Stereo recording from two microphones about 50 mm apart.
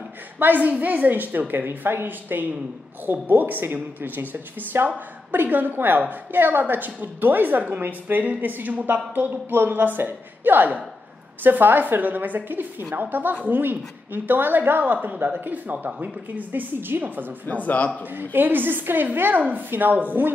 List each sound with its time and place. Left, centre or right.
0.4 s speech: right
17.5 s a man's voice: left
18.1 s speech: right